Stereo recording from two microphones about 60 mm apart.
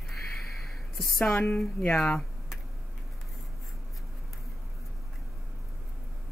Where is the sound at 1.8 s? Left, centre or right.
Centre.